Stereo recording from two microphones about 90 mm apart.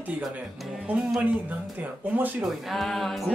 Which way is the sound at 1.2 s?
20° right (ahead or behind).